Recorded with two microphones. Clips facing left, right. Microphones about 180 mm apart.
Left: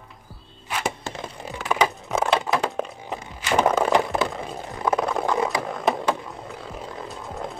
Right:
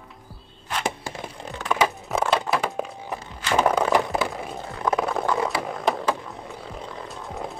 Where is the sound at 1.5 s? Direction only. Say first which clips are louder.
Even; 5° left (ahead or behind).